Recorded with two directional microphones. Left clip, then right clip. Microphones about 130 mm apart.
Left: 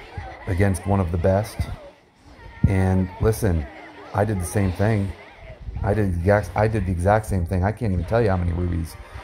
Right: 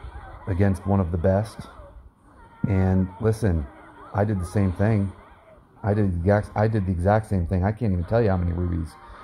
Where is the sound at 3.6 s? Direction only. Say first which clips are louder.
Left 3 dB; 15° left (ahead or behind).